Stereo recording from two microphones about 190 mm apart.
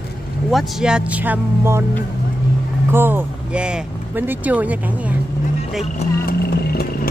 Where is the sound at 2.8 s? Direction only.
10° right (ahead or behind).